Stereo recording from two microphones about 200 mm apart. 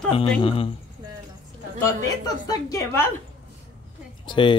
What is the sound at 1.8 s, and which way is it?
Speech, 20° left (ahead or behind).